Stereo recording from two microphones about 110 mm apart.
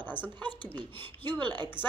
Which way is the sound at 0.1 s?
15° left (ahead or behind).